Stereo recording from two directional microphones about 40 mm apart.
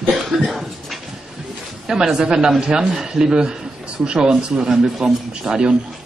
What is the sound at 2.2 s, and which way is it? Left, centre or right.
Speech, centre.